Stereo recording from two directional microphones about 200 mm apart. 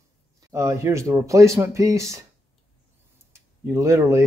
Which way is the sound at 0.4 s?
15° right (ahead or behind).